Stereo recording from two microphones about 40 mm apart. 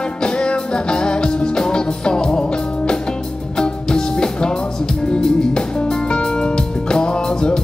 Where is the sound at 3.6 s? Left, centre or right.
Left.